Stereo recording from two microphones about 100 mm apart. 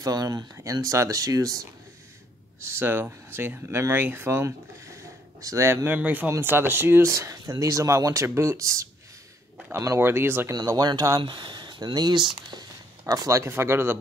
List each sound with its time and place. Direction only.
0.0 s speech: 35° right (ahead or behind)
2.8 s speech: 20° right (ahead or behind)
5.9 s speech: 15° right (ahead or behind)
10.5 s speech: 40° right (ahead or behind)
13.0 s speech: 35° right (ahead or behind)